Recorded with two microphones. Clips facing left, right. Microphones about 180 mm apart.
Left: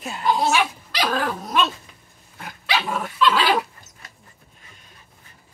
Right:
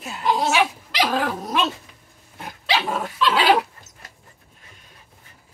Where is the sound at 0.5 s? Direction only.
10° right (ahead or behind).